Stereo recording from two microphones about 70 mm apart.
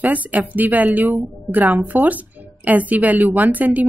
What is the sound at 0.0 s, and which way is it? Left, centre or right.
A woman's voice, right.